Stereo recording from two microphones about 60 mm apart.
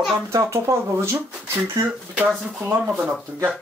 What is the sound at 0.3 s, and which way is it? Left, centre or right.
Speech, right.